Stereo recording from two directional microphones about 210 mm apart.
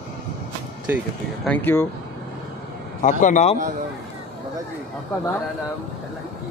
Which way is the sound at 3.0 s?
35° left (ahead or behind).